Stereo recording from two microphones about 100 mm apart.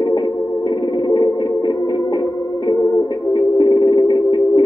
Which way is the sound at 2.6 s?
40° left (ahead or behind).